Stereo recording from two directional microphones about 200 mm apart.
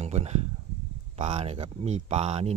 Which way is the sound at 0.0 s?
35° right (ahead or behind).